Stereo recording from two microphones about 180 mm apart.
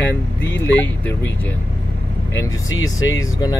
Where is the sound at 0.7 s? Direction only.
10° left (ahead or behind).